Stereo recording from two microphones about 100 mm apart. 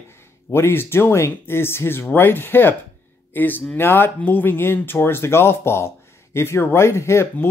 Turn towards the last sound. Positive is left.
turn(degrees=25)  # may be behind; listen again after turning